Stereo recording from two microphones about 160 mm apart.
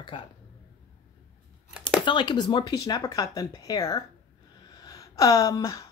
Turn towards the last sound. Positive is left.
turn(degrees=20)  # may be behind; listen again after turning